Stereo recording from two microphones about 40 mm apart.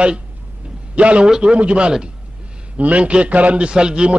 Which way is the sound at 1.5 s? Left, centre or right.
Right.